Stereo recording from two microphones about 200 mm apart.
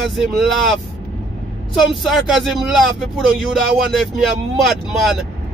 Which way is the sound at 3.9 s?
Centre (ahead or behind).